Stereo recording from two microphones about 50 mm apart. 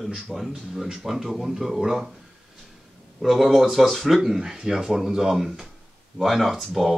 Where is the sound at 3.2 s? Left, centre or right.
Centre.